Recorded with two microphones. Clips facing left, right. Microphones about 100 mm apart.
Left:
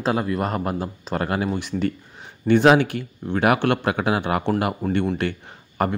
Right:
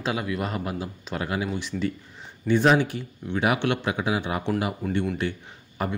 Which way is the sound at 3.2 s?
50° left (ahead or behind).